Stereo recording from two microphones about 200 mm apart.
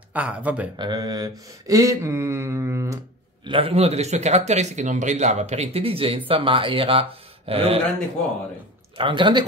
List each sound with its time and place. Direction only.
0.1 s speech: 5° right (ahead or behind)
0.7 s speech: 20° right (ahead or behind)
3.4 s speech: 25° right (ahead or behind)
8.9 s speech: 25° right (ahead or behind)